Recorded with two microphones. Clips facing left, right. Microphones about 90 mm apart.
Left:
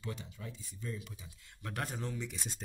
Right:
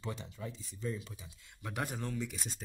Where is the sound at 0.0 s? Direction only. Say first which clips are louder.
Right 2 dB; 30° right (ahead or behind).